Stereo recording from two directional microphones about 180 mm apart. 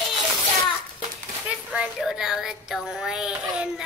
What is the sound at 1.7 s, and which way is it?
Child singing, 5° right (ahead or behind).